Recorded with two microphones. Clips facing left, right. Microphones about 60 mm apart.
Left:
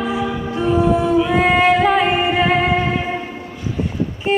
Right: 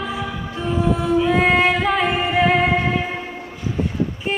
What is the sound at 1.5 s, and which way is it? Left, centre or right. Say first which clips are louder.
Music: left 4 dB; centre.